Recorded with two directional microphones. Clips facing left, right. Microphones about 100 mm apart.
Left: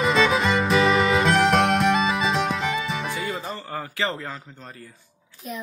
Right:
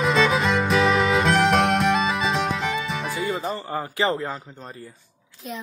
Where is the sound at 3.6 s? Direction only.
20° right (ahead or behind).